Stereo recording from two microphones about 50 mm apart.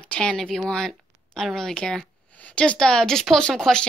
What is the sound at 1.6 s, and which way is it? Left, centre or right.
Speech, centre.